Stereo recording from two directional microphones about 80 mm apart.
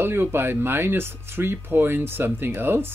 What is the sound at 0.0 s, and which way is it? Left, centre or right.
Speech, right.